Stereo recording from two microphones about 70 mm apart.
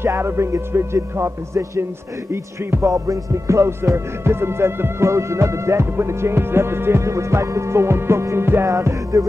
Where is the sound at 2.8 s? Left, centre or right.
Right.